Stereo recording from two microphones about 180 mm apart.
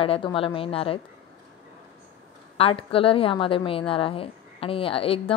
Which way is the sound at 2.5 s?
30° left (ahead or behind).